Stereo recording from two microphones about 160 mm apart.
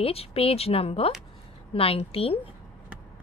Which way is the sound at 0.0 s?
40° left (ahead or behind).